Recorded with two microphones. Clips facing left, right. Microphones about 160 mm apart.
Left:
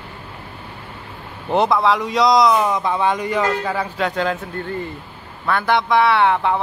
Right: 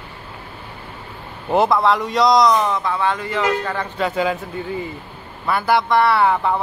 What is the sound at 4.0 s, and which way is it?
Speech, 5° right (ahead or behind).